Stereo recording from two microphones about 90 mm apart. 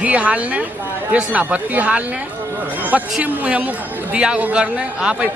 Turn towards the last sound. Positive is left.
turn(degrees=-10)  # may be behind; listen again after turning